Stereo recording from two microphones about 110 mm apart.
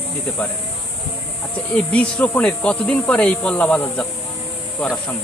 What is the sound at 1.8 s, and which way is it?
Speech, 10° left (ahead or behind).